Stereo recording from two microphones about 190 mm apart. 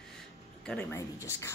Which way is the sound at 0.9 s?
15° left (ahead or behind).